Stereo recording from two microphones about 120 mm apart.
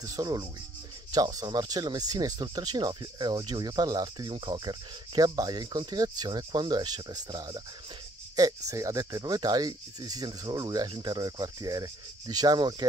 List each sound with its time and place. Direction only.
0.0 s speech: 30° right (ahead or behind)